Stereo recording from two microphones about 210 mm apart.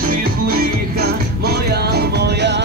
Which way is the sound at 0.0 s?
45° right (ahead or behind).